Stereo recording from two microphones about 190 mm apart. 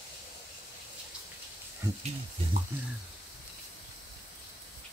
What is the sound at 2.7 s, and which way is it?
Speech, 10° right (ahead or behind).